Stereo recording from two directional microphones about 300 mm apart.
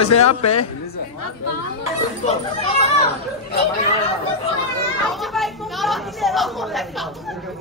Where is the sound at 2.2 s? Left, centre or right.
Left.